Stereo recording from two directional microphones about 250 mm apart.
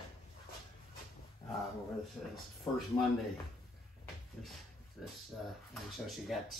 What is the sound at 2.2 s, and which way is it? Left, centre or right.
Speech, centre.